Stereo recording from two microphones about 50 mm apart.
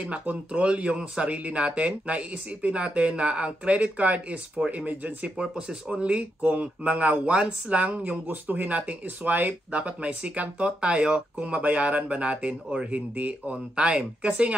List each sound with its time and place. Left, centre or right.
0.0 s speech: right
5.4 s speech: centre